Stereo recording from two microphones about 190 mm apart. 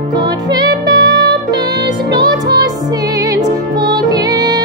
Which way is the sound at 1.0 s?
70° right (ahead or behind).